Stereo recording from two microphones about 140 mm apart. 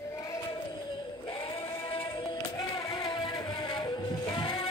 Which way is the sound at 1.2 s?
40° left (ahead or behind).